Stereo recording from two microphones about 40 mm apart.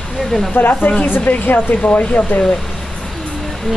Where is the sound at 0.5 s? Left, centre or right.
Left.